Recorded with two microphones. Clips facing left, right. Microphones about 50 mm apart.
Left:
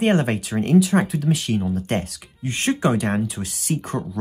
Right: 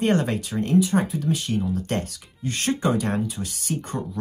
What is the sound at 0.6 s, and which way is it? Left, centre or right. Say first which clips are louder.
Speech: left 3 dB; left.